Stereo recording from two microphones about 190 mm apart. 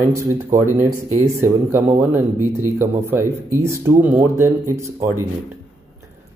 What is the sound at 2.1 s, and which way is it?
Speech, 15° right (ahead or behind).